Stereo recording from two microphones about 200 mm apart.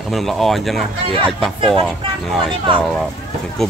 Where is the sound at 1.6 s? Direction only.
25° right (ahead or behind).